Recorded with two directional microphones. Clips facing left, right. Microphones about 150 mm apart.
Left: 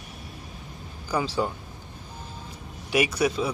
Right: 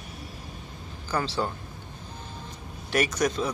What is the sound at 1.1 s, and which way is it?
Speech, 10° left (ahead or behind).